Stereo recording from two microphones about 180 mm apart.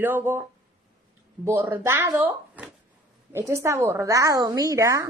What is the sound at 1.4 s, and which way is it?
A woman's voice, 15° right (ahead or behind).